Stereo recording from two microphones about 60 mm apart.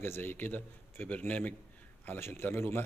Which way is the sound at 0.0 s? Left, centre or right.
Left.